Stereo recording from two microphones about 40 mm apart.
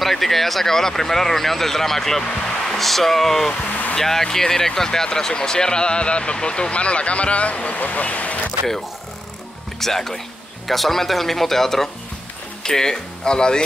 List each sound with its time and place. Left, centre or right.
0.0 s speech: centre
3.6 s vehicle: left
3.9 s speech: centre; by 8.4 s left
9.8 s speech: centre